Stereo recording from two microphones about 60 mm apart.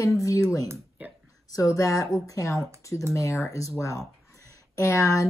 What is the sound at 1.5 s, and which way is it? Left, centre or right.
Speech, left.